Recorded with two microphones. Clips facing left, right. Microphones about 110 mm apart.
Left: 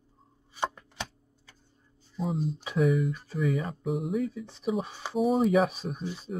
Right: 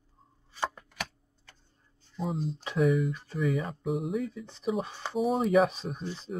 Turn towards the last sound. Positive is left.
turn(degrees=5)  # may be behind; listen again after turning